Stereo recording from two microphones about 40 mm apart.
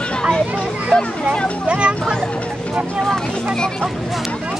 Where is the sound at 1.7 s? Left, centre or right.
Right.